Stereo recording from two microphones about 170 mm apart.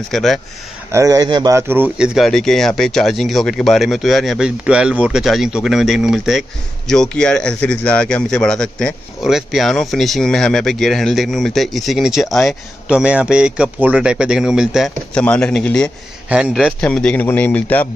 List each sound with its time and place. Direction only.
0.1 s a man's voice: centre (ahead or behind)
0.9 s a man's voice: 20° right (ahead or behind)
2.1 s a man's voice: centre (ahead or behind)
16.3 s a man's voice: 5° right (ahead or behind); by 17.8 s 10° left (ahead or behind)